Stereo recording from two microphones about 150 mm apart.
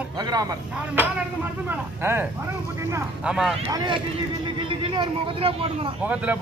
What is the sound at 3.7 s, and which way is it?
Speech, 25° right (ahead or behind).